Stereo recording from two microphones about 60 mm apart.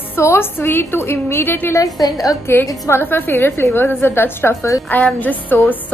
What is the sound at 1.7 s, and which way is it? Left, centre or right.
Speech, left.